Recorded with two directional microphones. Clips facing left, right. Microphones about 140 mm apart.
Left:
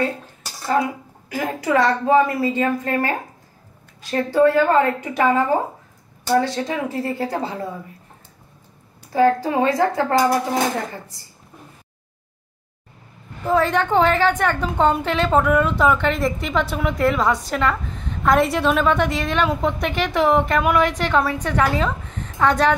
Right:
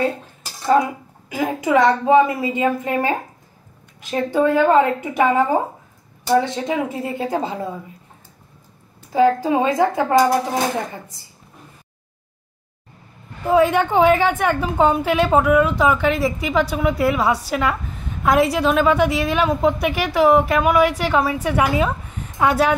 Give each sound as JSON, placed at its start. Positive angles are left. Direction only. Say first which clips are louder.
{"t": 1.3, "sound": "a woman's voice", "louder": "right 2 dB", "side_deg": -20}
{"t": 9.1, "sound": "a woman's voice", "louder": "right 1 dB", "side_deg": -20}
{"t": 13.5, "sound": "a woman's voice", "louder": "right 3 dB", "side_deg": -10}